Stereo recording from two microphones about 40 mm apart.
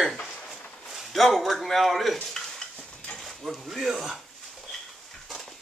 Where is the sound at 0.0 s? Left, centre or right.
Centre.